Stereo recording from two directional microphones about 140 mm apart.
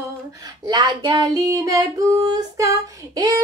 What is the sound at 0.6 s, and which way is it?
Female singing, 30° right (ahead or behind).